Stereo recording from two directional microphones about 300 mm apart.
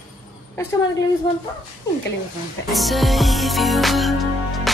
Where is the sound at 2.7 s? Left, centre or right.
Centre.